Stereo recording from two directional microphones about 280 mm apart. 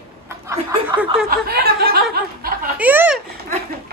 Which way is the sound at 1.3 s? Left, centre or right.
Right.